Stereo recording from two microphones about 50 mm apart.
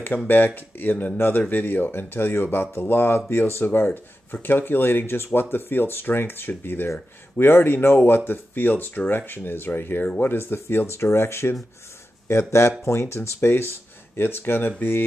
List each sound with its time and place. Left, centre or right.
0.1 s speech: left
13.5 s speech: left